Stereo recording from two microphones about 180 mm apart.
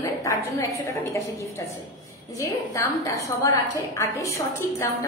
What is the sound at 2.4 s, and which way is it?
A woman's voice, 15° left (ahead or behind).